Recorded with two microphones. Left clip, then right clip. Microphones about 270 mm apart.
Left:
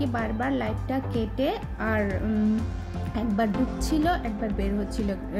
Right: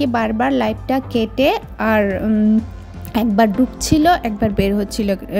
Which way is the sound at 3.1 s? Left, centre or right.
Right.